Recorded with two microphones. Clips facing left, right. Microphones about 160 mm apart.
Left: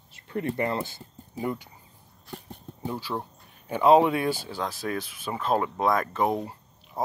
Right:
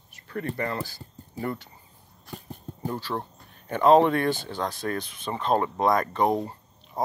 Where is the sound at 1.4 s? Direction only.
10° left (ahead or behind).